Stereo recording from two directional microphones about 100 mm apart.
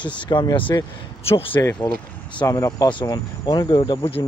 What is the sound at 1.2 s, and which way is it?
Speech, 75° left (ahead or behind).